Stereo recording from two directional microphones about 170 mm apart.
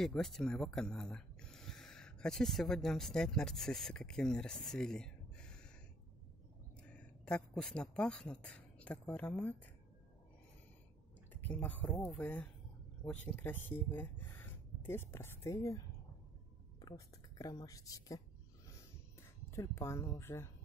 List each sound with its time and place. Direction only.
0.0 s speech: 5° left (ahead or behind)
6.8 s speech: 5° left (ahead or behind)
11.4 s speech: 10° left (ahead or behind)
16.8 s speech: 20° left (ahead or behind)
19.5 s speech: 15° left (ahead or behind)